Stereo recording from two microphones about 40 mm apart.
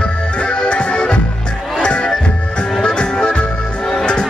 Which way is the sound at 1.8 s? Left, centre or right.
Left.